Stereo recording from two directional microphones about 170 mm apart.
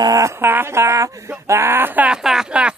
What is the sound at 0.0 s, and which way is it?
A man's voice, 20° right (ahead or behind).